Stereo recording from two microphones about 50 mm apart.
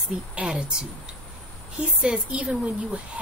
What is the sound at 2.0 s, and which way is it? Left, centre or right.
A woman's voice, right.